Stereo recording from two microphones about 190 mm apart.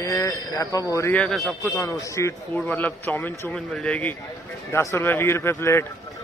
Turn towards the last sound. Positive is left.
turn(degrees=15)  # may be behind; listen again after turning